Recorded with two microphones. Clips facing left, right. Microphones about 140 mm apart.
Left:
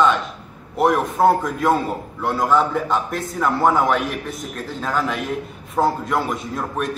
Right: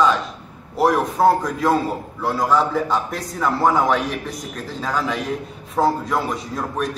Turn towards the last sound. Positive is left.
turn(degrees=0)  # may be behind; listen again after turning